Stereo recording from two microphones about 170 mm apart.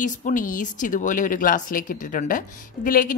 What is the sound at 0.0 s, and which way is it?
Speech, 50° left (ahead or behind).